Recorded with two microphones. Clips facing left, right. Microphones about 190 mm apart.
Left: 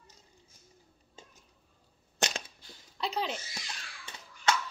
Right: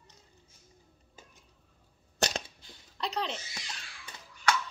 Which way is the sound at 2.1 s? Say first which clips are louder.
Right 2 dB; 40° right (ahead or behind).